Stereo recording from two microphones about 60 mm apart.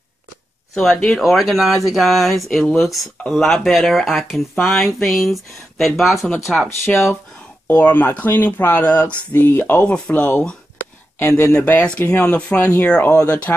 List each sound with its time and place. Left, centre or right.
0.7 s speech: centre
6.8 s speech: left
7.7 s speech: left
9.8 s speech: left
11.6 s speech: left